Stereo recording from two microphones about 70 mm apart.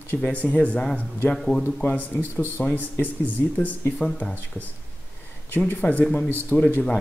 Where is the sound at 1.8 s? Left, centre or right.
Centre.